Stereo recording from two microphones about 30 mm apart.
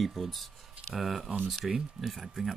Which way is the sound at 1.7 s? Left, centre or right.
Centre.